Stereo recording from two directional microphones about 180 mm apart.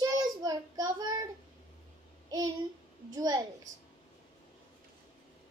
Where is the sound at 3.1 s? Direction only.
20° right (ahead or behind).